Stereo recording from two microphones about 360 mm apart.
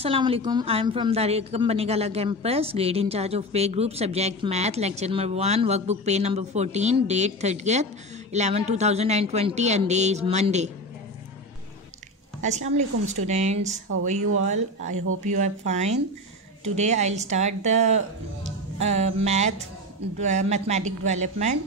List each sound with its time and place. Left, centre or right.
0.0 s a woman's voice: centre
12.4 s speech: centre